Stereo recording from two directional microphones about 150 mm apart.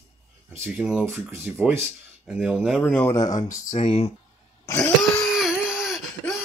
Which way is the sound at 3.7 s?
45° left (ahead or behind).